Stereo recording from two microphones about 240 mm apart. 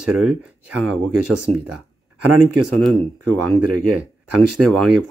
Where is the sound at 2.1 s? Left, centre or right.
Right.